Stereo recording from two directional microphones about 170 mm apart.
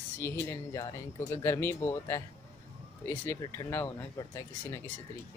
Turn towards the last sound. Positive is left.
turn(degrees=15)  # may be behind; listen again after turning